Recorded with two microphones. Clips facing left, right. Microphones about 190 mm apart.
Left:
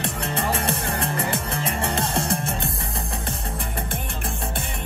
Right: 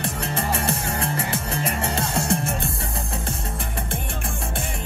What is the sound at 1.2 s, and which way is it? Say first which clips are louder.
Music: left 1 dB; 60° left (ahead or behind).